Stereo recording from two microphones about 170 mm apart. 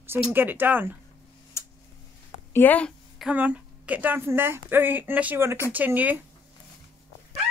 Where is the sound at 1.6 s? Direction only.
15° left (ahead or behind).